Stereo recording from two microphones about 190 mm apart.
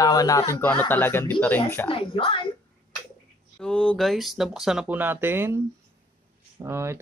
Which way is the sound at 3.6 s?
5° left (ahead or behind).